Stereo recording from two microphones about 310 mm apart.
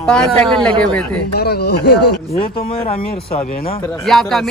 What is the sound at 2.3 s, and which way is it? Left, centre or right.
Speech, centre.